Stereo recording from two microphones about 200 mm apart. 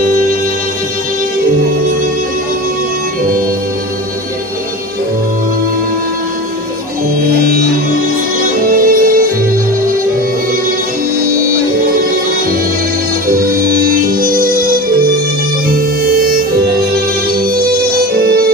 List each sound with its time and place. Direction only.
8.7 s music: 45° right (ahead or behind)
13.3 s music: 45° right (ahead or behind)
18.1 s music: 50° right (ahead or behind)